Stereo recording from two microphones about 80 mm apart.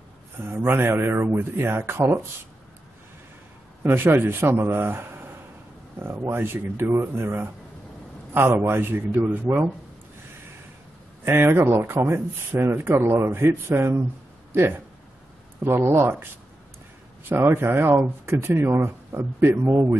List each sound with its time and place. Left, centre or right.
0.4 s speech: right
3.8 s speech: right
8.5 s speech: right
11.2 s speech: right
17.4 s speech: right